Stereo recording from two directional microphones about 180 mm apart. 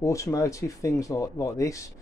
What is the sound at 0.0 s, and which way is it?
Speech, 15° left (ahead or behind).